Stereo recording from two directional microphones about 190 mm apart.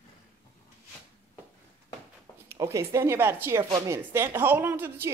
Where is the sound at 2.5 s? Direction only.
15° right (ahead or behind).